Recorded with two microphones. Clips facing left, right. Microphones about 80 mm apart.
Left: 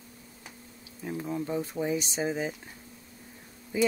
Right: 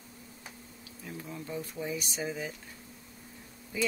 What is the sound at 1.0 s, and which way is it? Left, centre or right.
Speech, left.